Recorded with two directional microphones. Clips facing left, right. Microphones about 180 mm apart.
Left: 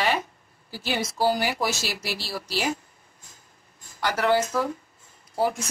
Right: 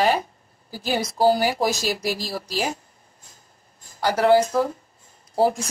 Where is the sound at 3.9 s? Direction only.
35° right (ahead or behind).